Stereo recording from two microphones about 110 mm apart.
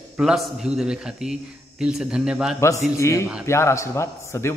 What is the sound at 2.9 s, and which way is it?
Speech, 25° left (ahead or behind).